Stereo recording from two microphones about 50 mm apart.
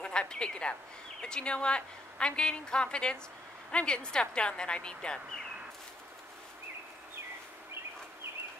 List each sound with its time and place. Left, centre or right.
0.0 s a woman's voice: centre